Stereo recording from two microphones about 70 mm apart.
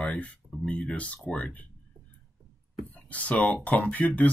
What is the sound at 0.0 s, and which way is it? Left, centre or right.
Speech, centre.